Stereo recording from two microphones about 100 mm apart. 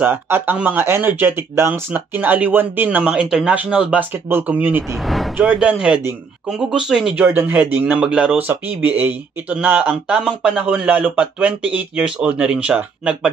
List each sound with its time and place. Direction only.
0.0 s speech: 20° right (ahead or behind)